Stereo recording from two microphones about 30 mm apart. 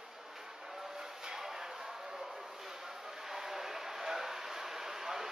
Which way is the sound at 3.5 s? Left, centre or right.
Centre.